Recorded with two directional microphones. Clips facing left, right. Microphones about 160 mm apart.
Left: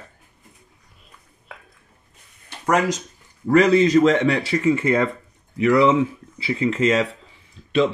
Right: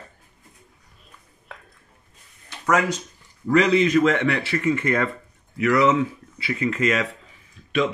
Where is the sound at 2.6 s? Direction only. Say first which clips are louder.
Left 2 dB; 30° left (ahead or behind).